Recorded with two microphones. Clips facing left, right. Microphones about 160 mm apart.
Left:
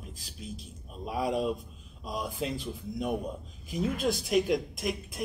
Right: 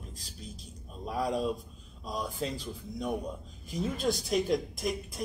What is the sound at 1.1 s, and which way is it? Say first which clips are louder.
A woman's voice: left 1 dB; 5° left (ahead or behind).